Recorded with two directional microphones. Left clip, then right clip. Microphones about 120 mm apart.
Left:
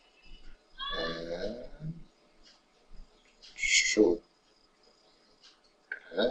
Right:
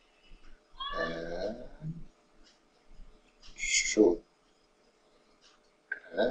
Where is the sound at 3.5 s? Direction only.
15° left (ahead or behind).